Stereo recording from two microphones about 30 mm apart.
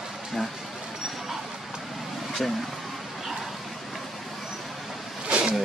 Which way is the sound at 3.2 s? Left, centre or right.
Centre.